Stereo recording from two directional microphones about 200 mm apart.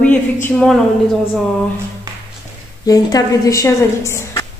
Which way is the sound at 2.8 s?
15° left (ahead or behind).